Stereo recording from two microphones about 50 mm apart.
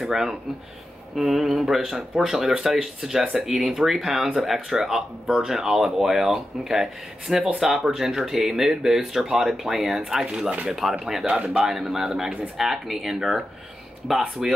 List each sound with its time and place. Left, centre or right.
0.0 s speech: centre
11.2 s speech: right
11.6 s speech: centre